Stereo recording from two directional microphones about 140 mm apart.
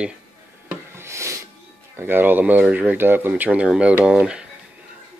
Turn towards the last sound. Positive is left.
turn(degrees=-5)  # may be behind; listen again after turning